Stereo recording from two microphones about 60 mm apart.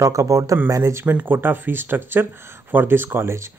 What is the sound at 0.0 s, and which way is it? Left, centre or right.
Speech, right.